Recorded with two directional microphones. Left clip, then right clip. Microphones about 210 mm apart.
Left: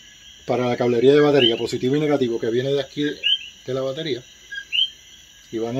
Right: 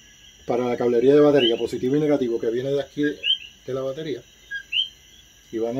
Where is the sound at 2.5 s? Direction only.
25° left (ahead or behind).